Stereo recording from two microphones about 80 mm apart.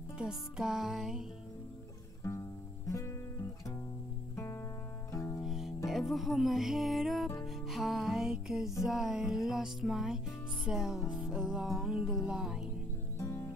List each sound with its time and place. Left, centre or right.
0.2 s music: centre
2.9 s guitar: left
4.4 s music: left
5.4 s music: centre
13.2 s music: left